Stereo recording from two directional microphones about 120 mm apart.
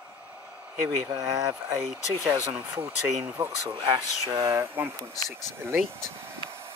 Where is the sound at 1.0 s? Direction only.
35° right (ahead or behind).